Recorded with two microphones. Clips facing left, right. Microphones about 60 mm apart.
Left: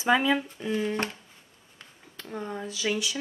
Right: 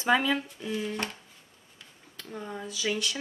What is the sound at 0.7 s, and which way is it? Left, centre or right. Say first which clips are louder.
Speech: left 4 dB; left.